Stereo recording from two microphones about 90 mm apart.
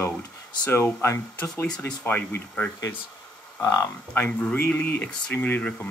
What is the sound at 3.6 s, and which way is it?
Speech, 35° left (ahead or behind).